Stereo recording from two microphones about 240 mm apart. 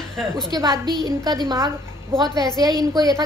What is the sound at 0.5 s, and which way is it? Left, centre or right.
A woman's voice, centre.